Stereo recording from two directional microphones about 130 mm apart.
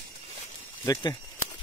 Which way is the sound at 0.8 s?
30° left (ahead or behind).